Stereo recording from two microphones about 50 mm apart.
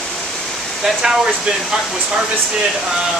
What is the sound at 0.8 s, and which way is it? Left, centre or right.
Speech, centre.